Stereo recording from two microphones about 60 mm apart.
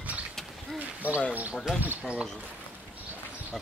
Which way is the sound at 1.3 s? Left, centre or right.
Right.